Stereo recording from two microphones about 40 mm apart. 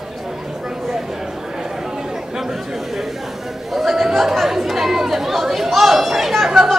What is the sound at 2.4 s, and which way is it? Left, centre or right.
Chatter, centre.